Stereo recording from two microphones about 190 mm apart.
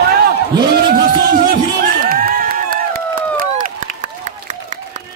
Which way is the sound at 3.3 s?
45° right (ahead or behind).